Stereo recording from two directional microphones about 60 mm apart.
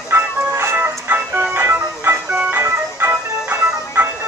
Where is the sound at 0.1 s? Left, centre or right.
Right.